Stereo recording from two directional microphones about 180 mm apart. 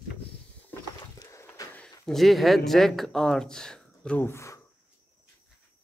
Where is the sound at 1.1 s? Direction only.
15° left (ahead or behind).